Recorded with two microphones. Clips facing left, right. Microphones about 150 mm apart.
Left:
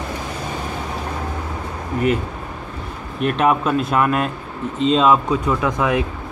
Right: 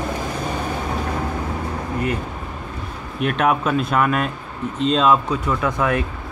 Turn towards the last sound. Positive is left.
turn(degrees=15)  # may be behind; listen again after turning